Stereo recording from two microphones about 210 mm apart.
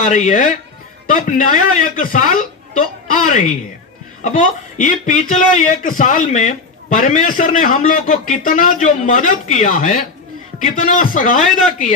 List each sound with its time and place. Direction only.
0.0 s speech: 35° left (ahead or behind)